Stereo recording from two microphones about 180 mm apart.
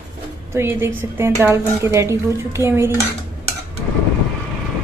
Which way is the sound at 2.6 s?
20° left (ahead or behind).